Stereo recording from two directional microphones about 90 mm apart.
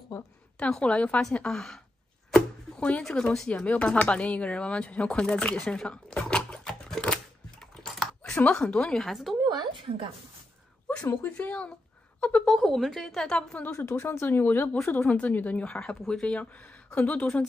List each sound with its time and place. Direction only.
0.1 s a woman's voice: 35° left (ahead or behind)
0.6 s speech: 10° left (ahead or behind)
8.2 s speech: 15° left (ahead or behind)
9.5 s a sound: 50° right (ahead or behind)
9.8 s a woman's voice: 75° right (ahead or behind)
11.1 s a woman's voice: 20° left (ahead or behind)
12.5 s a woman's voice: centre (ahead or behind)
13.7 s speech: 30° left (ahead or behind); by 17.5 s 10° left (ahead or behind)